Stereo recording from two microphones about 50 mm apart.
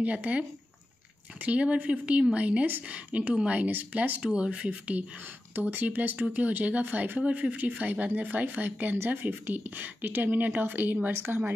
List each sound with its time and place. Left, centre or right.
0.0 s speech: right
3.7 s speech: right
4.2 s speech: right
8.9 s speech: right
11.1 s a woman's voice: right